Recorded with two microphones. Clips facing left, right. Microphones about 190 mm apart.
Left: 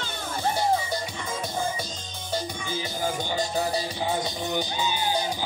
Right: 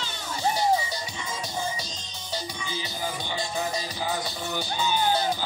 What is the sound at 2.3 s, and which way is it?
Music, 50° left (ahead or behind).